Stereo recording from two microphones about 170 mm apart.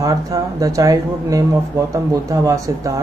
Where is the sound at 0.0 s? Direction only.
20° right (ahead or behind).